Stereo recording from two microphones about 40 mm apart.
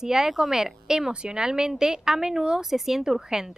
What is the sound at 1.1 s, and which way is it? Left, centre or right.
Speech, right.